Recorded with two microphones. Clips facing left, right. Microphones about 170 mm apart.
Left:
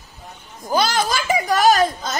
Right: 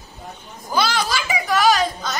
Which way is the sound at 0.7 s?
45° left (ahead or behind).